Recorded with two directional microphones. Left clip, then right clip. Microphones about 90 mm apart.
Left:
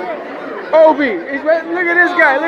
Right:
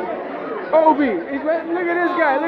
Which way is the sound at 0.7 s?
25° right (ahead or behind).